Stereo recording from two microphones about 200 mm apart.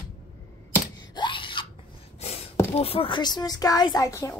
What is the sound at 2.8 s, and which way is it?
Speech, 30° left (ahead or behind).